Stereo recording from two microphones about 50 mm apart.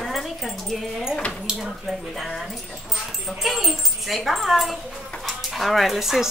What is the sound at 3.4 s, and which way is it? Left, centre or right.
Speech, centre.